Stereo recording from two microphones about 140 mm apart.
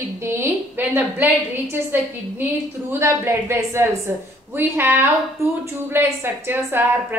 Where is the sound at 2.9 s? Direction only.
20° right (ahead or behind).